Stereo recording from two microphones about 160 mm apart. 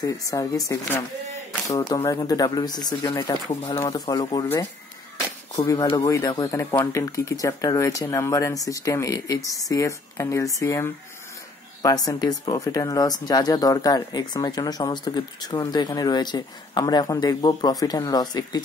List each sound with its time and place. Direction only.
0.0 s speech: 20° left (ahead or behind)
5.6 s speech: 20° left (ahead or behind)